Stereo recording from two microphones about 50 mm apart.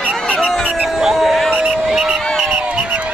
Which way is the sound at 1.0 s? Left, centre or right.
Centre.